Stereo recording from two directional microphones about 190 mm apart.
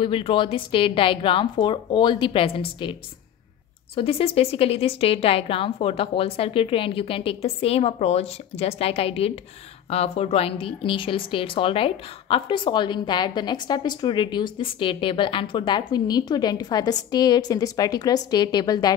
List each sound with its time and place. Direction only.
0.0 s a woman's voice: 25° left (ahead or behind)